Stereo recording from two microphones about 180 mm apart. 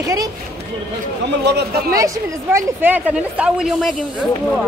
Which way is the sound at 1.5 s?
65° right (ahead or behind).